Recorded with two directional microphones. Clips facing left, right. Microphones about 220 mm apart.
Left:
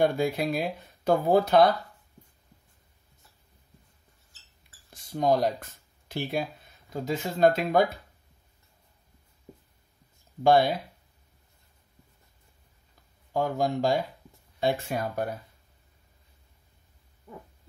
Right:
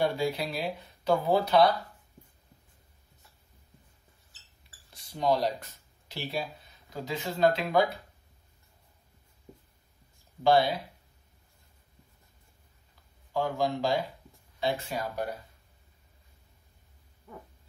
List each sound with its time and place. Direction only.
0.0 s speech: 50° left (ahead or behind)
4.9 s speech: 50° left (ahead or behind)
10.4 s speech: 50° left (ahead or behind)
13.3 s speech: 50° left (ahead or behind)